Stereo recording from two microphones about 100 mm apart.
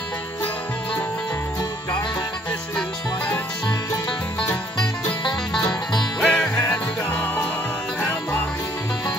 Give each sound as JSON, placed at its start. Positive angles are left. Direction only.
{"t": 5.5, "sound": "music", "side_deg": 10}